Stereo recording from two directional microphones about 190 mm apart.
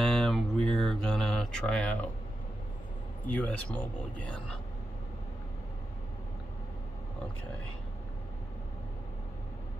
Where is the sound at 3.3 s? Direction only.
5° left (ahead or behind).